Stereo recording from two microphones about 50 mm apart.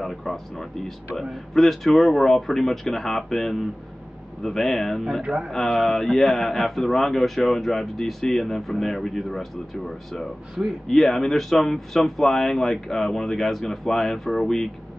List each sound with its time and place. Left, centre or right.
0.0 s a man's voice: centre
5.2 s a man's voice: right
5.5 s a man's voice: centre